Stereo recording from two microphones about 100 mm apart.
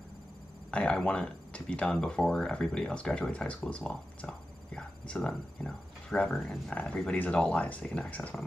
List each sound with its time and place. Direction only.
0.7 s speech: 10° left (ahead or behind)
6.7 s speech: 15° left (ahead or behind)
7.8 s speech: centre (ahead or behind)
8.1 s speech: 15° left (ahead or behind)